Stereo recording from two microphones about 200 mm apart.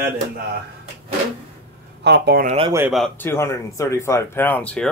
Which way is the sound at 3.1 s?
10° left (ahead or behind).